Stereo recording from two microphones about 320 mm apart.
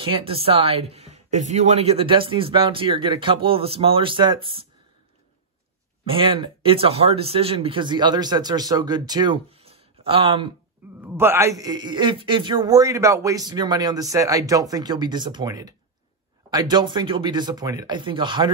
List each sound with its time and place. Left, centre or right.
0.0 s a man's voice: centre
6.0 s a man's voice: centre